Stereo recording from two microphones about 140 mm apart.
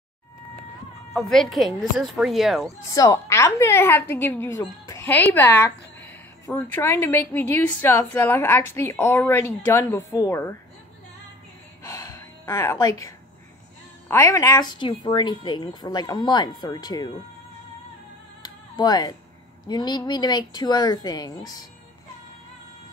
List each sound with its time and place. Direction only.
1.1 s speech: centre (ahead or behind)
2.9 s a woman's voice: 25° left (ahead or behind)
11.8 s gasp: 25° left (ahead or behind)
14.0 s speech: 20° left (ahead or behind)
18.4 s music: 30° left (ahead or behind)
19.7 s speech: 30° left (ahead or behind)